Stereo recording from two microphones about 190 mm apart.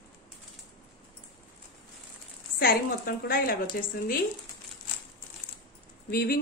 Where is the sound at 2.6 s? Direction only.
50° left (ahead or behind).